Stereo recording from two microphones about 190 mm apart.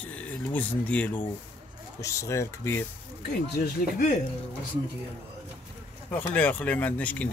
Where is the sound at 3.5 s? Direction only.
55° left (ahead or behind).